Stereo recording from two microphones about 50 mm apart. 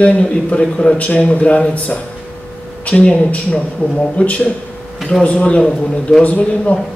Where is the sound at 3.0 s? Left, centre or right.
Left.